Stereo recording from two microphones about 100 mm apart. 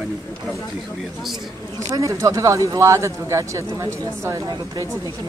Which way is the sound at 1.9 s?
35° right (ahead or behind).